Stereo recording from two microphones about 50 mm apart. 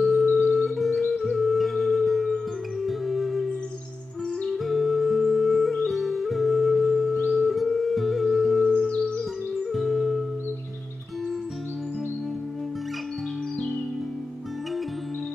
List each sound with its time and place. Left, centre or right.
0.0 s music: centre
4.5 s music: centre
8.7 s music: centre
9.6 s music: centre